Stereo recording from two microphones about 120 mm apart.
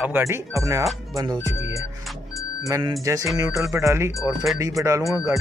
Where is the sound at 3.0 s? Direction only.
25° right (ahead or behind).